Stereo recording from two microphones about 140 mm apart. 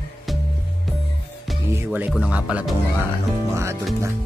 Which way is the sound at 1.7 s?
15° right (ahead or behind).